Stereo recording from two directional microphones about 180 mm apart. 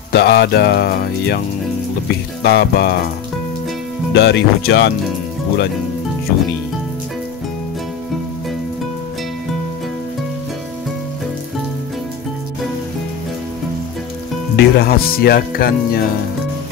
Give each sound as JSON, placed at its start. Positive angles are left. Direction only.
{"t": 0.1, "sound": "speech", "side_deg": 65}
{"t": 2.4, "sound": "speech", "side_deg": 65}
{"t": 4.1, "sound": "speech", "side_deg": 70}
{"t": 14.6, "sound": "speech", "side_deg": 60}